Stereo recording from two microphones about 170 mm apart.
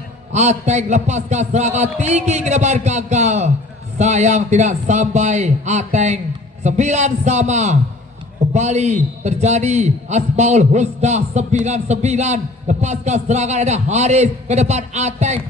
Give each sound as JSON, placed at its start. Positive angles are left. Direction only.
{"t": 0.3, "sound": "a man's voice", "side_deg": -45}